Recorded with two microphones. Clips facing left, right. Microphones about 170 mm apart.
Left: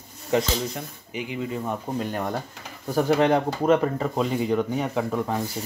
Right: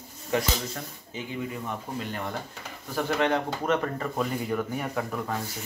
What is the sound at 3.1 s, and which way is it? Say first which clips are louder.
Speech: left 2 dB; 35° left (ahead or behind).